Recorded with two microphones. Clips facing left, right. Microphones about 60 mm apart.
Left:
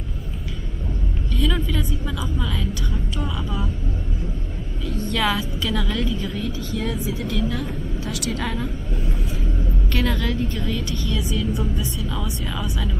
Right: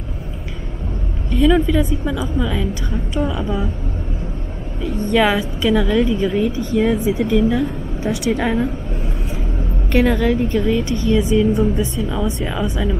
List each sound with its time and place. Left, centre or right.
1.3 s a woman's voice: centre
4.8 s a woman's voice: centre
8.4 s a woman's voice: right
9.9 s a woman's voice: centre